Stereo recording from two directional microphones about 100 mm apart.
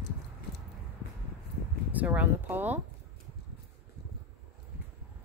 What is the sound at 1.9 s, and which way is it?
Speech, 15° right (ahead or behind).